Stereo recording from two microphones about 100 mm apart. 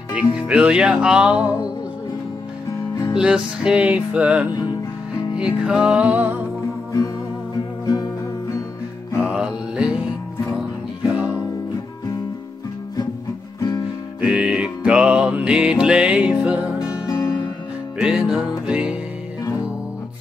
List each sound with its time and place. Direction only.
0.1 s music: 10° right (ahead or behind)
3.2 s music: 10° right (ahead or behind)
4.5 s music: 45° left (ahead or behind)
5.3 s music: 10° right (ahead or behind)
9.2 s music: 10° right (ahead or behind)
14.2 s music: 10° right (ahead or behind)
17.0 s music: 35° left (ahead or behind)
17.9 s music: 10° right (ahead or behind)